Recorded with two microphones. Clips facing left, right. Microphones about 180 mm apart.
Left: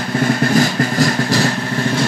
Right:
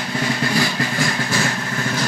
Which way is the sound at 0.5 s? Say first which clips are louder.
Left 6 dB; 40° left (ahead or behind).